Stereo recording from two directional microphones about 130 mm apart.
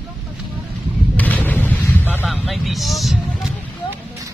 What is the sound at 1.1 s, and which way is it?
Artillery fire, 10° left (ahead or behind).